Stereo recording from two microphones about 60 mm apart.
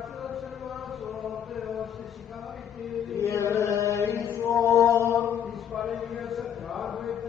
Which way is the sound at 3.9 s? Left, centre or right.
Left.